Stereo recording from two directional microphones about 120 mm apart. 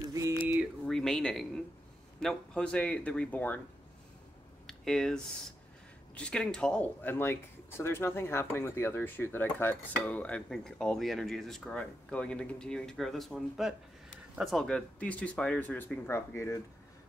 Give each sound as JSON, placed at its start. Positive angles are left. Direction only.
{"t": 0.8, "sound": "a sound", "side_deg": 5}
{"t": 2.1, "sound": "speech", "side_deg": 5}
{"t": 4.6, "sound": "speech", "side_deg": 5}
{"t": 16.1, "sound": "speech", "side_deg": 25}